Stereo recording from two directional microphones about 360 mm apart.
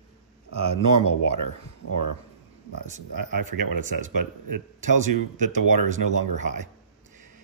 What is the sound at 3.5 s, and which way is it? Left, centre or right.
Speech, right.